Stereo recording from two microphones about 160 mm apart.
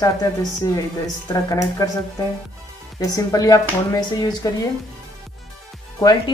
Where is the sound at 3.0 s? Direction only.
20° left (ahead or behind).